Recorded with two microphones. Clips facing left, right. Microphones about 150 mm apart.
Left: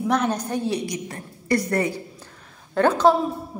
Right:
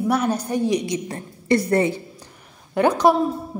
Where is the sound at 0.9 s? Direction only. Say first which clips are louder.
Right 5 dB; 25° right (ahead or behind).